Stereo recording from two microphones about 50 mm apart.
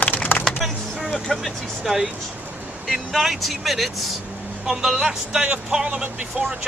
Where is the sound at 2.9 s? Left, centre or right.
Centre.